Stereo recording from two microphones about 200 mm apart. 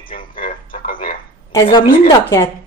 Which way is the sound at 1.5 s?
20° left (ahead or behind).